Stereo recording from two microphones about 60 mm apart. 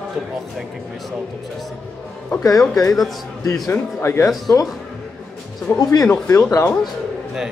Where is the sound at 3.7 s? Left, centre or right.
Left.